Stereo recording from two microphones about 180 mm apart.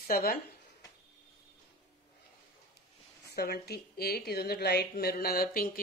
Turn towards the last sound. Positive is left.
turn(degrees=55)  # may be behind; listen again after turning